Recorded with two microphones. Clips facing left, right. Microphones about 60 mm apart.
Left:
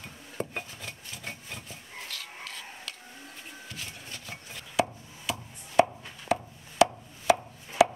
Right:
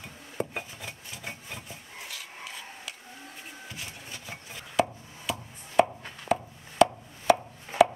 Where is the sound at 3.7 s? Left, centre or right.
Centre.